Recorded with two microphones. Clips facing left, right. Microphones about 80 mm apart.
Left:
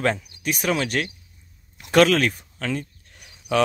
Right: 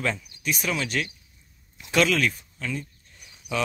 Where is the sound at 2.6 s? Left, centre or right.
Left.